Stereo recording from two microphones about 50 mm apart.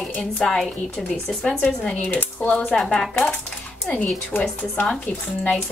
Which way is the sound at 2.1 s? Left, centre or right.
Left.